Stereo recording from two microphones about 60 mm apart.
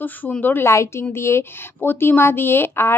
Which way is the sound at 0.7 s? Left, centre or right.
Left.